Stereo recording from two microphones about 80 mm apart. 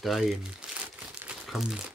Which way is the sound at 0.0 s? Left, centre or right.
Centre.